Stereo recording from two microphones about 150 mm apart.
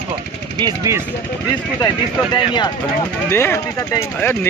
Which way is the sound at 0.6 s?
30° right (ahead or behind).